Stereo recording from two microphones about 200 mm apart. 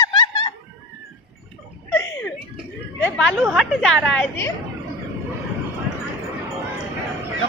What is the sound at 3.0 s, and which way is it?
A woman's voice, centre (ahead or behind).